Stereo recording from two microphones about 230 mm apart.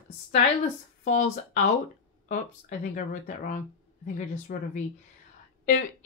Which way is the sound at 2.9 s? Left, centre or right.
Left.